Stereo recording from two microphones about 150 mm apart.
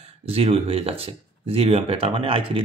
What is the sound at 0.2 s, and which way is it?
Speech, 40° right (ahead or behind).